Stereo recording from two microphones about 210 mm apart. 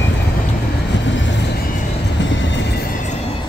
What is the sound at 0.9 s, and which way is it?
Vehicle, 60° left (ahead or behind).